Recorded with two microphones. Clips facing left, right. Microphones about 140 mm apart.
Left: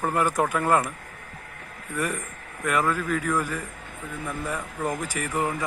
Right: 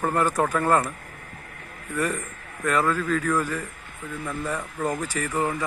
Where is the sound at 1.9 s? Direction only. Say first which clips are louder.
Right 2 dB; 10° left (ahead or behind).